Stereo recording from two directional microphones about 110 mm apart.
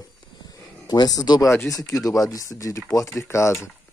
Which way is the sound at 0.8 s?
35° left (ahead or behind).